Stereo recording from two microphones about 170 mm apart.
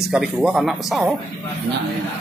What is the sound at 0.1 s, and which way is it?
Speech, 5° right (ahead or behind).